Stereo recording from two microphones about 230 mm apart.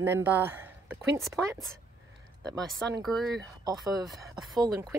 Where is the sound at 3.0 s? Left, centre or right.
Centre.